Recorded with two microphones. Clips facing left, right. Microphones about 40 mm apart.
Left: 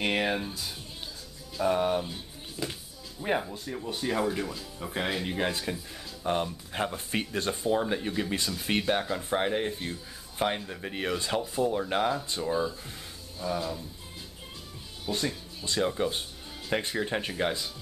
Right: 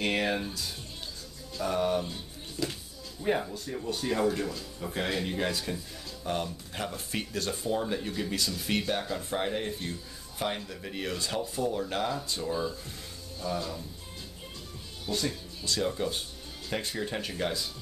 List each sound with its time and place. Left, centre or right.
0.0 s speech: centre
15.0 s speech: centre